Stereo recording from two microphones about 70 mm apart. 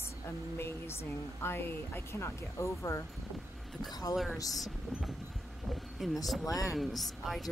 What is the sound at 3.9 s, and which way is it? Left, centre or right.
Speech, left.